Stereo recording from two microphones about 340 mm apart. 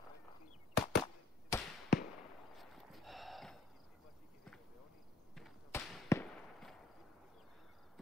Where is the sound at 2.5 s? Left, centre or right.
Centre.